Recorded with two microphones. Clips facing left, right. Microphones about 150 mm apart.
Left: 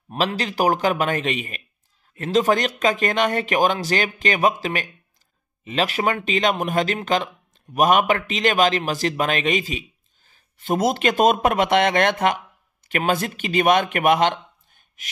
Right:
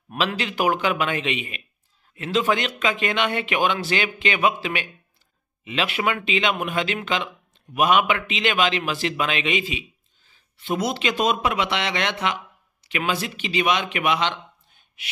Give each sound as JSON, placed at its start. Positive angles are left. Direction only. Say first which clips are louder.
{"t": 0.2, "sound": "a man's voice", "louder": "left 2 dB", "side_deg": 40}